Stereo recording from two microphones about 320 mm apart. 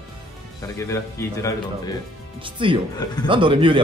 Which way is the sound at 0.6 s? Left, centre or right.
Centre.